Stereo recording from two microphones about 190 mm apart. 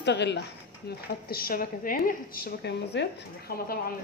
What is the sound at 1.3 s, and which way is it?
A woman's voice, 50° left (ahead or behind).